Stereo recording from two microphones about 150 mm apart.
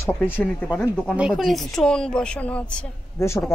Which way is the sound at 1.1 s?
5° right (ahead or behind).